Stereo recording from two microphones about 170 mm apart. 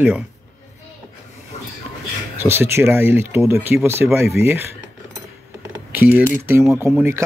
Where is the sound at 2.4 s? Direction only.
15° right (ahead or behind).